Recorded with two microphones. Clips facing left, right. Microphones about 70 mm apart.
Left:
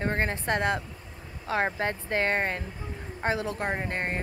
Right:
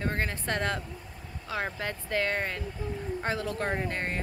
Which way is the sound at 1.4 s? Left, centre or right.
Left.